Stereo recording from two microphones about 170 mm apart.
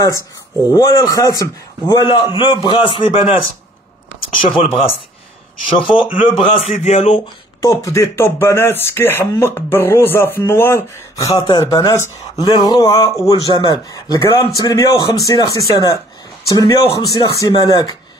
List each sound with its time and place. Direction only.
0.7 s a man's voice: 20° left (ahead or behind)
4.6 s a man's voice: 35° left (ahead or behind)
7.6 s a man's voice: 20° left (ahead or behind)